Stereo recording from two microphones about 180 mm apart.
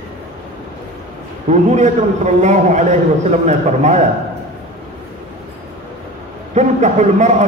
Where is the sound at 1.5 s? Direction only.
40° right (ahead or behind).